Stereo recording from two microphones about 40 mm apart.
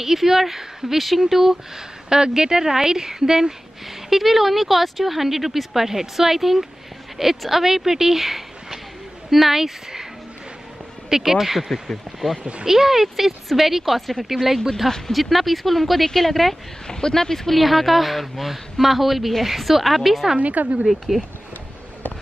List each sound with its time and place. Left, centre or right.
0.0 s speech: centre
11.1 s speech: centre
12.6 s speech: centre
16.8 s speech: centre
17.6 s speech: centre
20.3 s a woman's voice: right
20.8 s speech: centre